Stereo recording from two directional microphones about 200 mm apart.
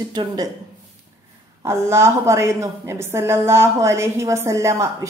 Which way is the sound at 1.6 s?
15° right (ahead or behind).